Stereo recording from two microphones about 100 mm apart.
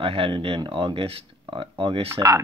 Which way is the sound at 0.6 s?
55° right (ahead or behind).